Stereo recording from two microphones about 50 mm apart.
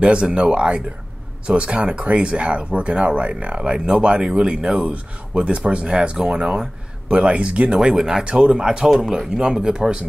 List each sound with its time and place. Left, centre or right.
0.0 s speech: right